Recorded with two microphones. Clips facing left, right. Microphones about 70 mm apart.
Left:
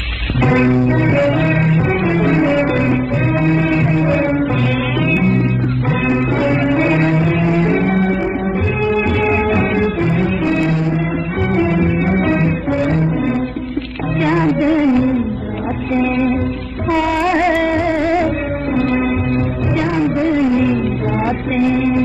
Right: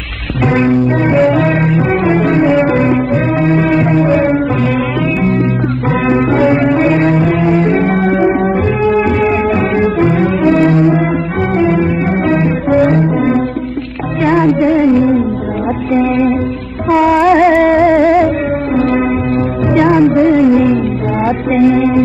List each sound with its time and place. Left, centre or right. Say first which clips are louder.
1.3 s music: right 4 dB; right
2.3 s music: right 4 dB; centre
2.8 s music: right 4 dB; right
6.6 s music: right 4 dB; centre
7.6 s music: right 3 dB; right
8.0 s music: right 6 dB; right
9.5 s music: right 3 dB; right
9.9 s music: right 5 dB; right
15.9 s music: right 4 dB; right
16.9 s music: right 7 dB; right